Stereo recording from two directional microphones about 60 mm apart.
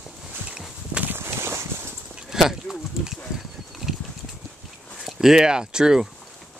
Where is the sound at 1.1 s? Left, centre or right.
Right.